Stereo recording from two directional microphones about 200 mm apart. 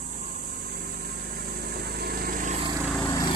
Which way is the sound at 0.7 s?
50° right (ahead or behind).